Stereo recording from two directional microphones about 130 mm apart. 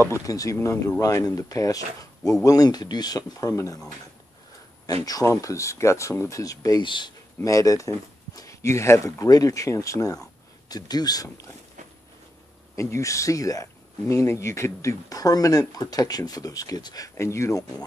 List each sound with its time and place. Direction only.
0.0 s speech: 25° left (ahead or behind)
5.0 s speech: 25° left (ahead or behind)
7.3 s speech: 25° left (ahead or behind)
12.7 s speech: 25° left (ahead or behind)